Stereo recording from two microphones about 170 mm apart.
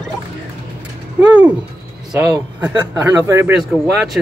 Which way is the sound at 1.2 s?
10° right (ahead or behind).